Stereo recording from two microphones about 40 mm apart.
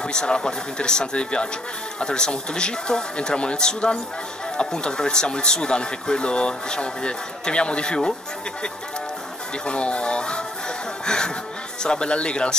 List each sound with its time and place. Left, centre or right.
0.0 s speech: centre
9.7 s speech: left